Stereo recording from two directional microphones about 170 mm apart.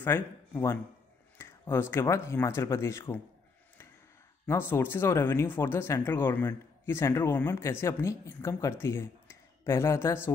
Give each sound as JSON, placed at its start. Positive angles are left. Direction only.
{"t": 0.0, "sound": "speech", "side_deg": 15}
{"t": 4.5, "sound": "speech", "side_deg": 15}